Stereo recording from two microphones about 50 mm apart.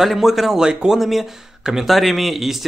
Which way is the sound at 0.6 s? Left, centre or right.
Centre.